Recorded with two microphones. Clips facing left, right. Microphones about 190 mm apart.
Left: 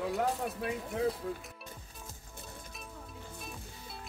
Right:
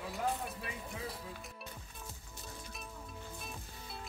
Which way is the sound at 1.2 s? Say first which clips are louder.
Left 10 dB; 60° left (ahead or behind).